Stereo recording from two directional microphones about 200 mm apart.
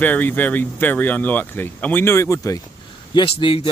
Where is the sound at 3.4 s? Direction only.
25° left (ahead or behind).